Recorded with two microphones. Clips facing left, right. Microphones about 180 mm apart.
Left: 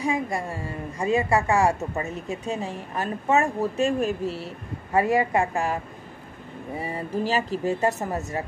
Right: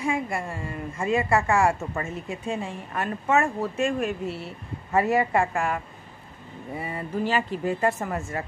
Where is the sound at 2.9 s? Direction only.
35° left (ahead or behind).